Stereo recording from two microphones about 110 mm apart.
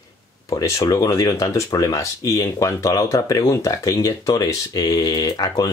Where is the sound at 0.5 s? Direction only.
30° left (ahead or behind).